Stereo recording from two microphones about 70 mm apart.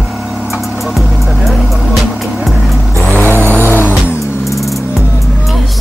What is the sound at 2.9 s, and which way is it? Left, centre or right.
Vehicle, right.